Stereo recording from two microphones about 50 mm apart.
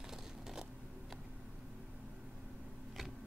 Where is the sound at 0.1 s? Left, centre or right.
Centre.